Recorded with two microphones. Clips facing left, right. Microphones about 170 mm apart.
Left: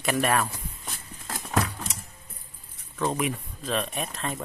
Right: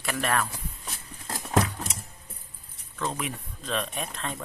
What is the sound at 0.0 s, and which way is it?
Speech, 15° left (ahead or behind).